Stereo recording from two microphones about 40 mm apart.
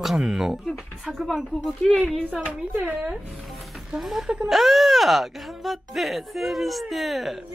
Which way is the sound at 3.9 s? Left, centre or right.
Centre.